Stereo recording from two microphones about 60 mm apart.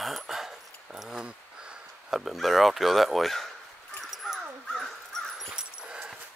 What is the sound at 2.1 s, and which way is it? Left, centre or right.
Speech, centre.